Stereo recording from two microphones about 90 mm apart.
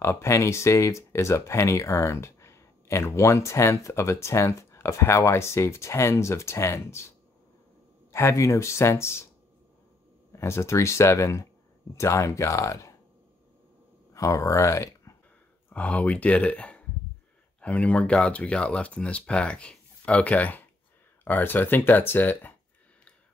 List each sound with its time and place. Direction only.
0.0 s speech: 30° left (ahead or behind)
10.3 s speech: 30° left (ahead or behind)
14.1 s speech: 35° left (ahead or behind)
15.7 s speech: 15° left (ahead or behind)